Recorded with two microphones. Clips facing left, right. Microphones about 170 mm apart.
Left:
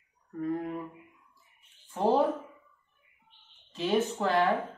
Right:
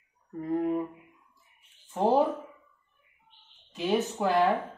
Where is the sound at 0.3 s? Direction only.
25° right (ahead or behind).